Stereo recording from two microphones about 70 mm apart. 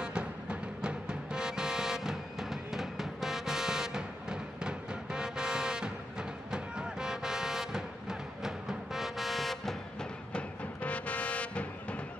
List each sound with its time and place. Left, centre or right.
0.0 s music: centre
10.3 s music: centre